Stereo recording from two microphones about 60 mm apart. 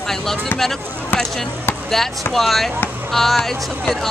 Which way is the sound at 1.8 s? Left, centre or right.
Centre.